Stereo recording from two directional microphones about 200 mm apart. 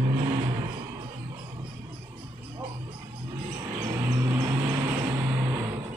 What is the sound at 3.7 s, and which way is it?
Vehicle, 15° right (ahead or behind).